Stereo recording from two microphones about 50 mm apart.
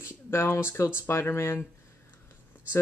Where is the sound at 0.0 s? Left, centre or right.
Left.